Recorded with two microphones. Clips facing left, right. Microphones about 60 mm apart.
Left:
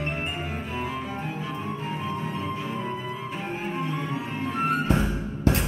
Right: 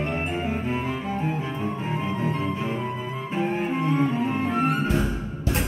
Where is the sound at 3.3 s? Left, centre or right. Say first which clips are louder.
Right 10 dB; right.